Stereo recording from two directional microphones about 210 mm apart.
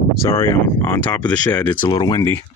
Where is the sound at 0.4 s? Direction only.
10° left (ahead or behind).